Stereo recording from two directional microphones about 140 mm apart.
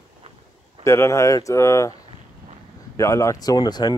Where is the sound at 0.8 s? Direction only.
20° left (ahead or behind).